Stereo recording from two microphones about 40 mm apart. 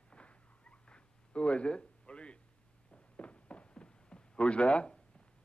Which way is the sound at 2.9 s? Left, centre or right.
Left.